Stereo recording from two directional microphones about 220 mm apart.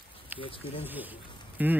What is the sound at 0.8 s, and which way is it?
Speech, 10° right (ahead or behind).